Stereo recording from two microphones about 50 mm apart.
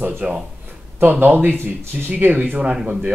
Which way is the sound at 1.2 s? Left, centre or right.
Right.